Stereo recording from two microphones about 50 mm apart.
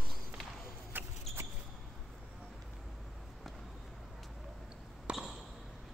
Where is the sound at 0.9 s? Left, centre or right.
Right.